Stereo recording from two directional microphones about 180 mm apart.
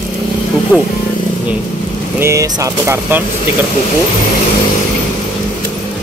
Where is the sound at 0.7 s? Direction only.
5° right (ahead or behind).